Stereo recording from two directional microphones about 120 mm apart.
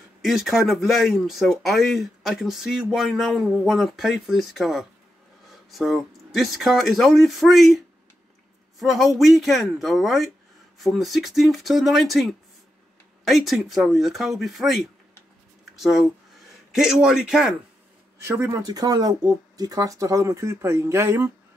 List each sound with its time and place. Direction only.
0.2 s speech: centre (ahead or behind)
18.2 s speech: 25° right (ahead or behind)